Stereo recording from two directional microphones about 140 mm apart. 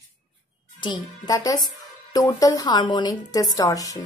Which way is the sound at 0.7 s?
35° left (ahead or behind).